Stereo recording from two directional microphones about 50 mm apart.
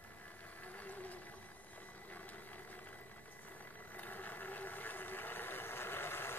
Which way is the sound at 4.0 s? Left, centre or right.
Left.